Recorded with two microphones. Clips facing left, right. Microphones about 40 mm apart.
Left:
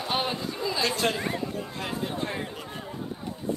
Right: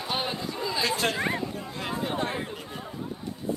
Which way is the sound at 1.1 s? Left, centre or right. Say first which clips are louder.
Right 2 dB; right.